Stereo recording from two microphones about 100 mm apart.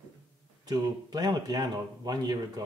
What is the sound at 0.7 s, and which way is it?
Speech, 45° right (ahead or behind).